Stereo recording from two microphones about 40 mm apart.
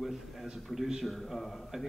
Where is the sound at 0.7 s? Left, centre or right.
Centre.